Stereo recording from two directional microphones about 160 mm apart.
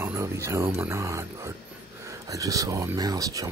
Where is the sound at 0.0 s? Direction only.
15° right (ahead or behind).